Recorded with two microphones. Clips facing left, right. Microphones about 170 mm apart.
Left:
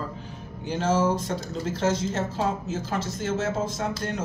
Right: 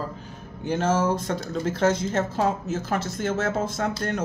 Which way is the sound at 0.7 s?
55° right (ahead or behind).